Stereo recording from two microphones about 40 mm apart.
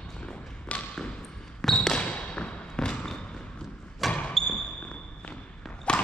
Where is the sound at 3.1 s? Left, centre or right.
Left.